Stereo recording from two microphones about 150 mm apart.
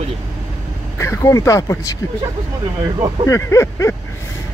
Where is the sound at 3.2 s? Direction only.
20° left (ahead or behind).